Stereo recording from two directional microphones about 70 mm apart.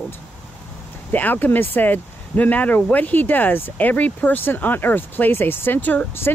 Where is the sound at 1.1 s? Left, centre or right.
Left.